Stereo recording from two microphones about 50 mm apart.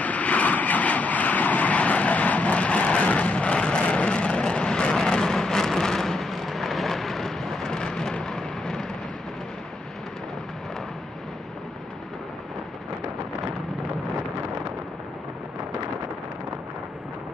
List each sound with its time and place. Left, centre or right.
0.0 s vehicle: left; by 8.8 s centre